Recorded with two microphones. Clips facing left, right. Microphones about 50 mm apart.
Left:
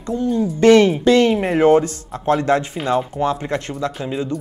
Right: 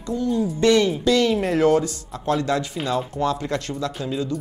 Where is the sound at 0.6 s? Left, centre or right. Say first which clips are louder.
Left 7 dB; left.